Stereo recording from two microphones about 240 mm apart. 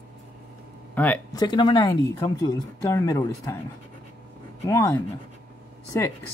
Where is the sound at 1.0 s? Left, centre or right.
Centre.